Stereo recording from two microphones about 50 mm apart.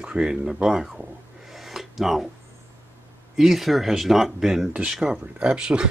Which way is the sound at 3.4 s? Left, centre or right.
Centre.